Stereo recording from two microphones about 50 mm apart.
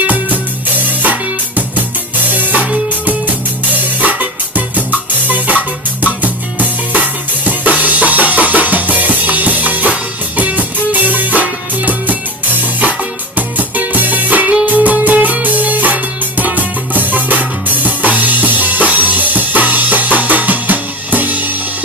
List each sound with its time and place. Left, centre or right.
0.0 s music: right
4.0 s music: right
6.2 s drum kit: right
11.4 s music: right
13.6 s music: right